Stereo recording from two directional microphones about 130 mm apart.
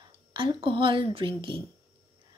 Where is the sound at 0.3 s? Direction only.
40° right (ahead or behind).